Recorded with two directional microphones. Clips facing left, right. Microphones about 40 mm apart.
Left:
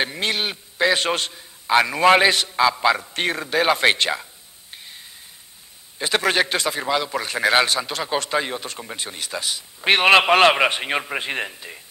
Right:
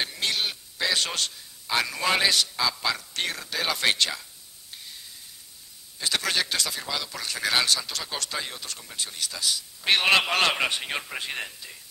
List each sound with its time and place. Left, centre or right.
0.0 s a man's voice: left